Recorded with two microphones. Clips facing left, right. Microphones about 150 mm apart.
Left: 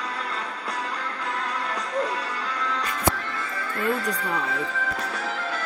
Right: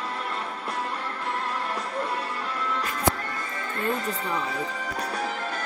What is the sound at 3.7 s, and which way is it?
Music, 25° right (ahead or behind).